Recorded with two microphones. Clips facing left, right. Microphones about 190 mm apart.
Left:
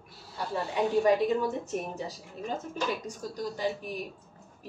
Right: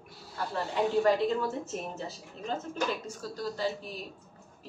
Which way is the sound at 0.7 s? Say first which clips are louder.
Left 1 dB; 15° left (ahead or behind).